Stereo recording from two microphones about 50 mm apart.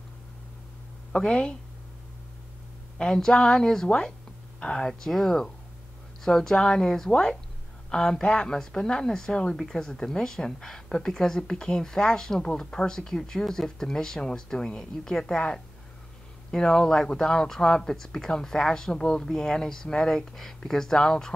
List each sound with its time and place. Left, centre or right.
1.1 s speech: left
3.0 s speech: centre